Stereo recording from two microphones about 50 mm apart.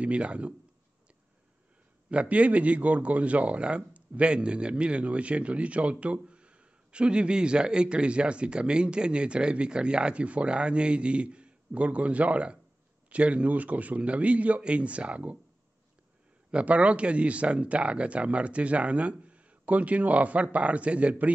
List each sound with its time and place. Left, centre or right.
0.0 s a man's voice: right
2.0 s a man's voice: right
16.4 s a man's voice: right